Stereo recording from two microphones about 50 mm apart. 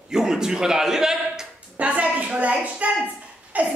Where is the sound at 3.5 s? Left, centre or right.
Right.